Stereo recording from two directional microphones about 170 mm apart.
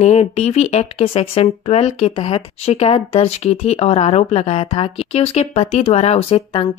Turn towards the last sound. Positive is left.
turn(degrees=35)  # may be behind; listen again after turning